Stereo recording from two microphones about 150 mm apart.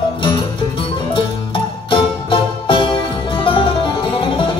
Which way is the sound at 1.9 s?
35° left (ahead or behind).